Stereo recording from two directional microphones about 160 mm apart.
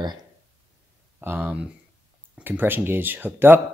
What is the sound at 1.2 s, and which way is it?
Speech, 10° right (ahead or behind).